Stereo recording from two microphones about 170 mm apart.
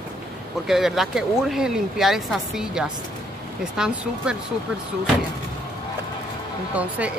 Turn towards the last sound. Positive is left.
turn(degrees=-10)  # may be behind; listen again after turning